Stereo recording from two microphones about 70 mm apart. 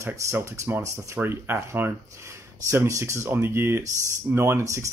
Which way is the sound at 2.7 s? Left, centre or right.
Right.